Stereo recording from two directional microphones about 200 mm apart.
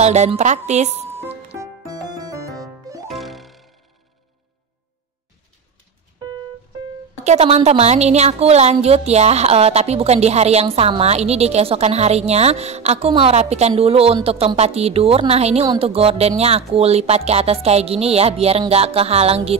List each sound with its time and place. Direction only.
0.0 s a woman's voice: 35° right (ahead or behind)
1.6 s music: 20° right (ahead or behind)
3.1 s music: centre (ahead or behind)
7.2 s a woman's voice: 30° right (ahead or behind)